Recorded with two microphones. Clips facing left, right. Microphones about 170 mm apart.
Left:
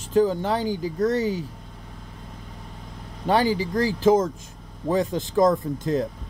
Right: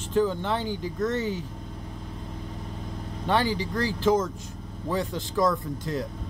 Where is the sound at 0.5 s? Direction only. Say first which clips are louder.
Left 4 dB; 10° left (ahead or behind).